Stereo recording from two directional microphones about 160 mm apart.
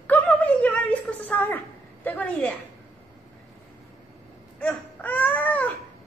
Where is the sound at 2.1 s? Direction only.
10° left (ahead or behind).